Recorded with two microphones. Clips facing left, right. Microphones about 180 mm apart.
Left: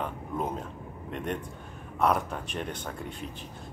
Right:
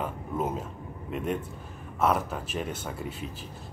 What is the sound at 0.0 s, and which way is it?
Speech, 5° right (ahead or behind).